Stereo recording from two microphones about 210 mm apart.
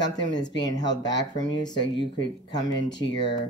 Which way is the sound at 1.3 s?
20° left (ahead or behind).